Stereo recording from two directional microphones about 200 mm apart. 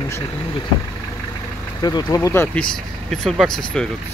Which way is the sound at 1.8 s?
20° left (ahead or behind).